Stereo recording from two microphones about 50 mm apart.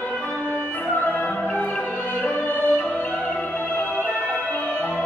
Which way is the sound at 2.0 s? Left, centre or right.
Left.